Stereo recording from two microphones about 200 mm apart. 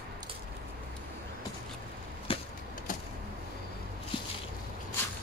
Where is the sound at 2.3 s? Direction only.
25° left (ahead or behind).